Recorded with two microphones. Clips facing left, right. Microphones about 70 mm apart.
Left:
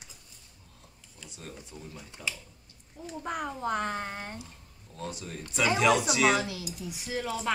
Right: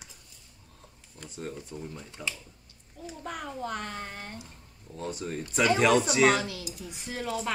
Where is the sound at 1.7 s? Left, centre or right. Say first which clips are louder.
Right 6 dB; right.